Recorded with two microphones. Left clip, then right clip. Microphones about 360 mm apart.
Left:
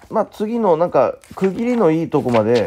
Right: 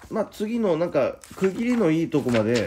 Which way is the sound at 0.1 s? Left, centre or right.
Centre.